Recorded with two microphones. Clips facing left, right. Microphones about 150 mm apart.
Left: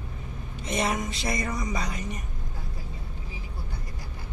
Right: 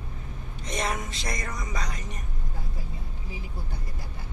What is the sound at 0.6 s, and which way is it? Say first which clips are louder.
Speech: left 3 dB; 5° left (ahead or behind).